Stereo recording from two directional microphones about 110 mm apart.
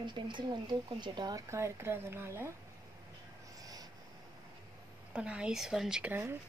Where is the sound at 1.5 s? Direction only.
25° right (ahead or behind).